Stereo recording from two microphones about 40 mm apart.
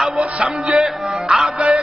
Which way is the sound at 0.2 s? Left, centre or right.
Right.